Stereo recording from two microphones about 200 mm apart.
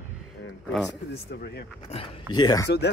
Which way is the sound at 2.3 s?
20° left (ahead or behind).